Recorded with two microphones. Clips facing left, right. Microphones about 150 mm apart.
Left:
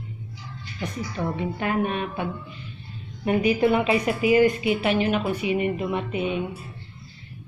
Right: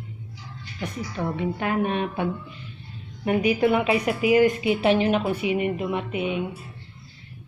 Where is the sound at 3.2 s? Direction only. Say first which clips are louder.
Even; 10° right (ahead or behind).